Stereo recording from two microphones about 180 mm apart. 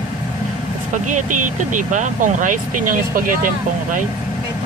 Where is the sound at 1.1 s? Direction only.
45° right (ahead or behind).